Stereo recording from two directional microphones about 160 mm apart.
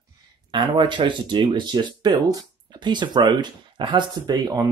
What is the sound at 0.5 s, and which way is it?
Speech, 30° right (ahead or behind).